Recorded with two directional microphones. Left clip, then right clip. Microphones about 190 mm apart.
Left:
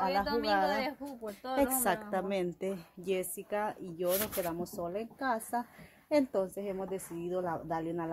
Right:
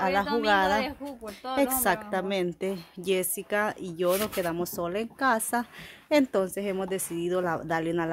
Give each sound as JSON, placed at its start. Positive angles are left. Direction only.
{"t": 0.0, "sound": "a woman's voice", "side_deg": -30}
{"t": 0.7, "sound": "speech", "side_deg": 5}
{"t": 1.5, "sound": "a woman's voice", "side_deg": -15}